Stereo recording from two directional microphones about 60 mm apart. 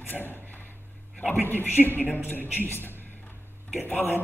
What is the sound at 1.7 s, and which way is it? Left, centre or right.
A woman's voice, left.